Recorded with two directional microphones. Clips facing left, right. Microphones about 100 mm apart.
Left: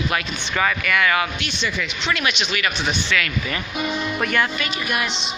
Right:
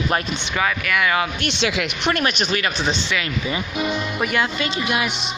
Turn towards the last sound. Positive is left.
turn(degrees=-10)  # may be behind; listen again after turning